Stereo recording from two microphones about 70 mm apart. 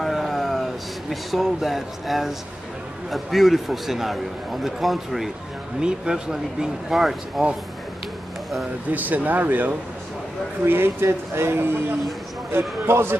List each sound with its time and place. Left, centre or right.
0.0 s a sound: centre
1.3 s a man's voice: centre
5.8 s speech: centre
8.9 s speech: right